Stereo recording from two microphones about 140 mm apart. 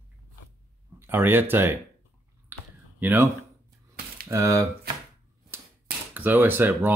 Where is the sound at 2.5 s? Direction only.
15° right (ahead or behind).